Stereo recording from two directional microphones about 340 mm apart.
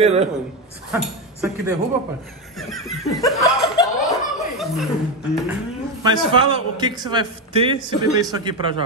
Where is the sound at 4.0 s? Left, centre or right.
Centre.